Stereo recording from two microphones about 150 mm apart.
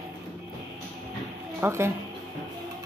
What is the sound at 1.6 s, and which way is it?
Speech, 15° right (ahead or behind).